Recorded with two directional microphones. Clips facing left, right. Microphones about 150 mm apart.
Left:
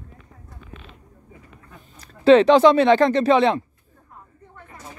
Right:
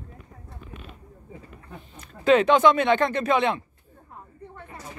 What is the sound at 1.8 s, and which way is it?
Speech, 40° left (ahead or behind).